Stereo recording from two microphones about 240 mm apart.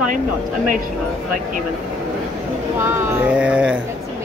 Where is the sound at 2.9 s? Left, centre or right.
Centre.